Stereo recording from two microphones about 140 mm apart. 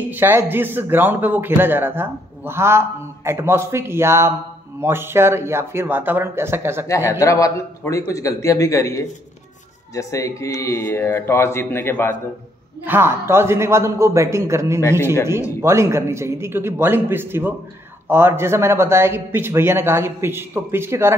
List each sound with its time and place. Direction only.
0.1 s a man's voice: 15° right (ahead or behind)
6.9 s speech: 20° left (ahead or behind)
12.8 s a man's voice: 15° right (ahead or behind)